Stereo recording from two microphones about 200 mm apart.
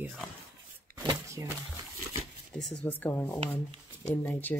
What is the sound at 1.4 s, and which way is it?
Speech, 15° right (ahead or behind).